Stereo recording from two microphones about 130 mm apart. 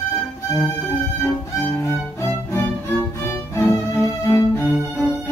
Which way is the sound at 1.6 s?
20° left (ahead or behind).